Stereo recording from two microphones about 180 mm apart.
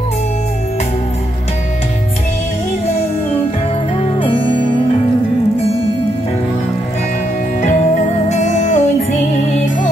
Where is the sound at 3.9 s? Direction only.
30° left (ahead or behind).